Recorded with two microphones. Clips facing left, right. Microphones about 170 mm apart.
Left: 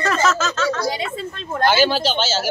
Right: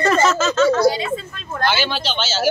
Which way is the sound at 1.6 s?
40° left (ahead or behind).